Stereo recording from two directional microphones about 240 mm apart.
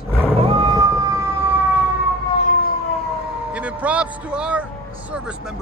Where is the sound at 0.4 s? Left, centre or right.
Right.